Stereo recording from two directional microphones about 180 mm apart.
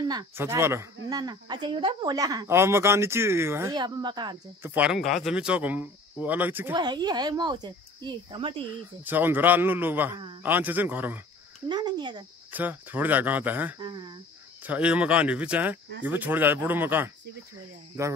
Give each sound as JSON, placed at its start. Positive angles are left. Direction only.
{"t": 0.0, "sound": "speech", "side_deg": -20}
{"t": 4.6, "sound": "a man's voice", "side_deg": -10}
{"t": 6.7, "sound": "speech", "side_deg": -25}
{"t": 9.0, "sound": "a man's voice", "side_deg": -10}
{"t": 11.7, "sound": "speech", "side_deg": -25}
{"t": 12.5, "sound": "a man's voice", "side_deg": -10}
{"t": 13.7, "sound": "speech", "side_deg": -25}
{"t": 14.6, "sound": "a man's voice", "side_deg": -10}